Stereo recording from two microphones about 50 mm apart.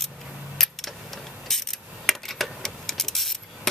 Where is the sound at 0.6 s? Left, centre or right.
Centre.